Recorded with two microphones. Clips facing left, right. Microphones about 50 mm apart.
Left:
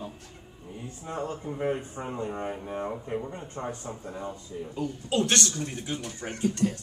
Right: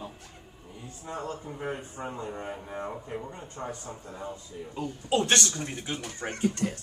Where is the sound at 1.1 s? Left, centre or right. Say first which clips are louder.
Left 2 dB; left.